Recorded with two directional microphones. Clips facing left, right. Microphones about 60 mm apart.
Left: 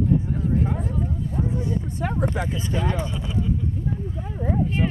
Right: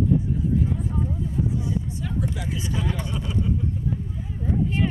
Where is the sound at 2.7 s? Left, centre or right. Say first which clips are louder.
Left 1 dB; left.